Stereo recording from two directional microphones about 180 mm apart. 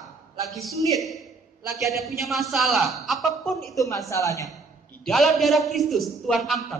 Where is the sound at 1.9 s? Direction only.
Centre (ahead or behind).